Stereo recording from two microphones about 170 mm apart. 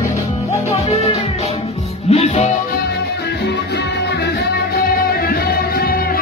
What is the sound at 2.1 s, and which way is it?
Music, 35° left (ahead or behind).